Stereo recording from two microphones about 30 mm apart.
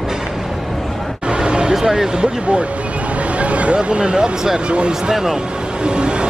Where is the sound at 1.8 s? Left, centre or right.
Centre.